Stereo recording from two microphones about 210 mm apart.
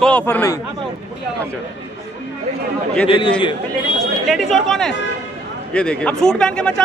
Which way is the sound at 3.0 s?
25° left (ahead or behind).